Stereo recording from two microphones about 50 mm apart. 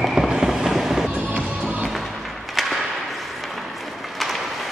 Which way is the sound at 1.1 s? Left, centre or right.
Right.